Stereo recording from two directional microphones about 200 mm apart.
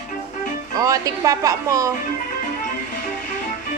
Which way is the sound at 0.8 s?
15° right (ahead or behind).